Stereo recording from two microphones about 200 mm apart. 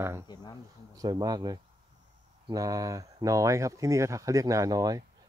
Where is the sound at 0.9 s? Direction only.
20° right (ahead or behind).